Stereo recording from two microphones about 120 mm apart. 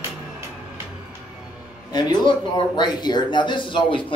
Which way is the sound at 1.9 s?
35° left (ahead or behind).